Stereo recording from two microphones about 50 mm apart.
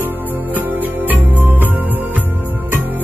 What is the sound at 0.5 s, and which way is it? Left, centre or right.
Music, right.